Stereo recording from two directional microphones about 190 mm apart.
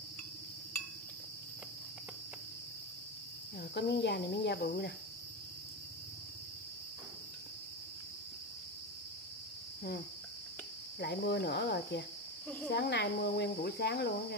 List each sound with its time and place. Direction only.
3.7 s speech: 60° left (ahead or behind)
11.0 s speech: 60° left (ahead or behind)